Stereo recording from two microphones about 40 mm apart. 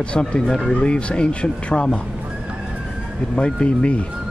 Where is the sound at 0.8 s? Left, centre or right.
Left.